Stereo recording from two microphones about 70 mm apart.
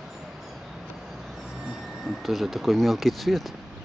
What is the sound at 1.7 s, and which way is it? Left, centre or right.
Speech, centre.